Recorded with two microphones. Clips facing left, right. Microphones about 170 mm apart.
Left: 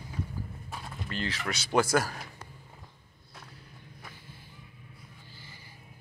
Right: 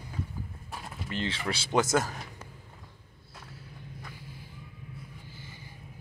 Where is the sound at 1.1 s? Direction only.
25° right (ahead or behind).